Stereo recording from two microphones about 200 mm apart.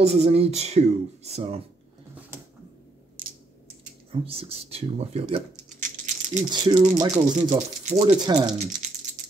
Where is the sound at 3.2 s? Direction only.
45° right (ahead or behind).